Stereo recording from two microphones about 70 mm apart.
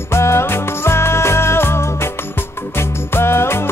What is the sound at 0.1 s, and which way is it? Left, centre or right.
Music, left.